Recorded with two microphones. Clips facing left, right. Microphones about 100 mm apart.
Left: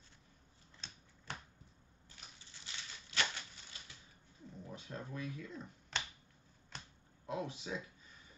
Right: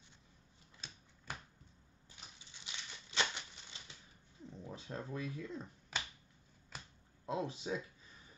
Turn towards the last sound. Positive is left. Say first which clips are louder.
# right 2 dB
turn(degrees=-30)  # may be behind; listen again after turning